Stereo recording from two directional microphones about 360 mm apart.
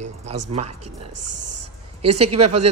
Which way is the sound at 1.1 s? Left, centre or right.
Right.